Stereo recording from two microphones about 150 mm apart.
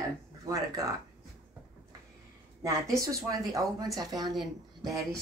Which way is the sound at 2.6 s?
20° right (ahead or behind).